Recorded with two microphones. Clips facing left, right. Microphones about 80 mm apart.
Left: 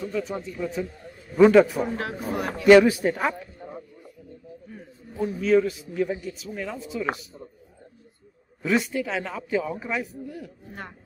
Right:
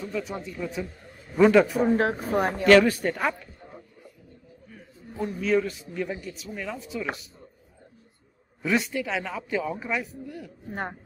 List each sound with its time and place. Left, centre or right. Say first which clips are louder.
0.0 s a man's voice: left 3 dB; centre
1.9 s speech: right 6 dB; right
2.6 s a man's voice: left 4 dB; centre
5.2 s a man's voice: left 4 dB; centre
8.6 s a man's voice: left 2 dB; centre
10.7 s speech: right 9 dB; right